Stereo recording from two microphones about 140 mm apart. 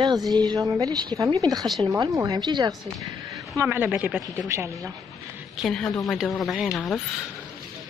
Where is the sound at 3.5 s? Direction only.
15° right (ahead or behind).